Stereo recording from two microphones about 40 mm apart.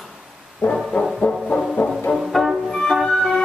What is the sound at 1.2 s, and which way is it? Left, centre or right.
Music, left.